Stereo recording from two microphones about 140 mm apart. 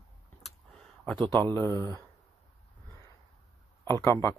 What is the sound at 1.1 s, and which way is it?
Speech, 10° left (ahead or behind).